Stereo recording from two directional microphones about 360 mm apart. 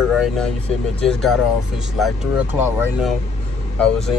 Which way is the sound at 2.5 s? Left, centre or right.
Centre.